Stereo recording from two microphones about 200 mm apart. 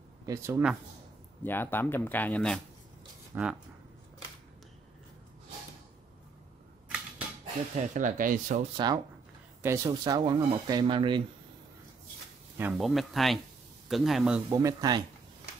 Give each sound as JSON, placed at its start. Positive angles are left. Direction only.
{"t": 0.3, "sound": "speech", "side_deg": -15}
{"t": 1.4, "sound": "speech", "side_deg": 10}
{"t": 3.3, "sound": "speech", "side_deg": -10}
{"t": 7.7, "sound": "speech", "side_deg": -40}
{"t": 8.7, "sound": "speech", "side_deg": -20}
{"t": 12.5, "sound": "speech", "side_deg": -5}
{"t": 14.6, "sound": "speech", "side_deg": -15}